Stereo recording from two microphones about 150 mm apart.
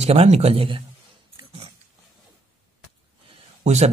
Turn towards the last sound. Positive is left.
turn(degrees=-45)  # may be behind; listen again after turning